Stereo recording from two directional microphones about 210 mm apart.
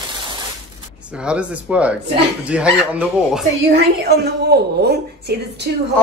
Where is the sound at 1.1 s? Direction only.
5° right (ahead or behind).